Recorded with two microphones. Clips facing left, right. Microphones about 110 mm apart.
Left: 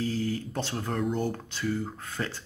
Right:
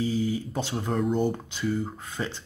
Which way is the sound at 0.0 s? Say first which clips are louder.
Right 3 dB; 10° right (ahead or behind).